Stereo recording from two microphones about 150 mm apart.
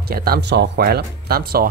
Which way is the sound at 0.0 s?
90° right.